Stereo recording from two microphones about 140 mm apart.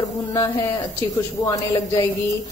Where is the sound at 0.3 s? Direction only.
20° left (ahead or behind).